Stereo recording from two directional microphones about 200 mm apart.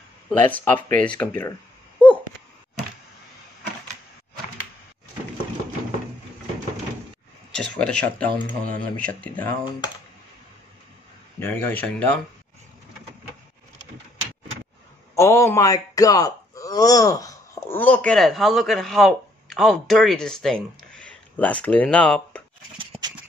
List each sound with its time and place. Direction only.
0.4 s speech: 10° left (ahead or behind)
2.0 s a sound: 5° left (ahead or behind)
7.5 s speech: 5° left (ahead or behind)
11.3 s speech: 10° left (ahead or behind)
15.1 s speech: 15° left (ahead or behind)
22.8 s a sound: 20° right (ahead or behind)